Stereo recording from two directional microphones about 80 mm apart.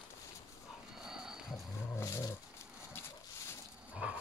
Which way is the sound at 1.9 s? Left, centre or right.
Left.